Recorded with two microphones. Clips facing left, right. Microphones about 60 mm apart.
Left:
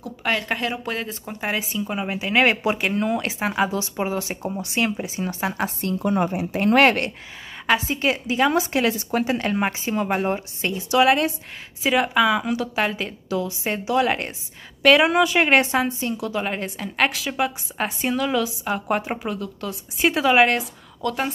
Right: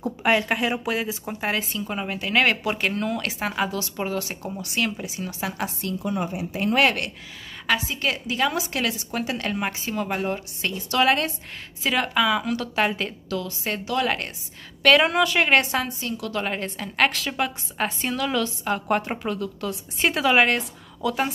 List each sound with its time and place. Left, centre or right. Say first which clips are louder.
0.2 s a woman's voice: right 2 dB; centre; by 7.1 s left
8.0 s a woman's voice: left 4 dB; centre
11.1 s a woman's voice: left 3 dB; centre